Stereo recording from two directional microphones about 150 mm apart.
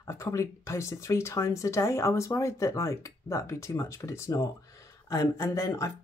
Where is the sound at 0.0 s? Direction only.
20° left (ahead or behind).